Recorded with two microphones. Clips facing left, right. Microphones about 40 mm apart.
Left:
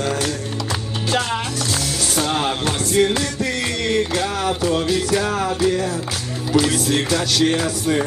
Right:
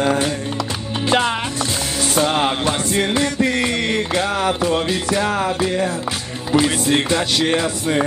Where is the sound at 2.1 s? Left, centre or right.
Right.